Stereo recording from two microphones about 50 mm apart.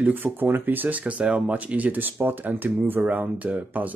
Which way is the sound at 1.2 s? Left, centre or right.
Centre.